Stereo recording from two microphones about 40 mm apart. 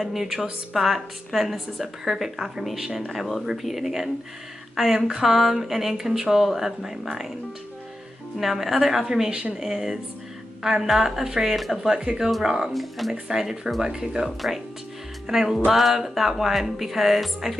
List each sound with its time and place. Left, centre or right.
0.0 s speech: centre
8.4 s speech: centre
9.3 s speech: right
9.6 s speech: centre
12.3 s speech: centre
13.3 s speech: centre